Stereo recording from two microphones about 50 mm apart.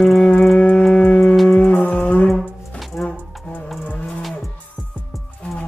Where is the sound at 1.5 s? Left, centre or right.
Left.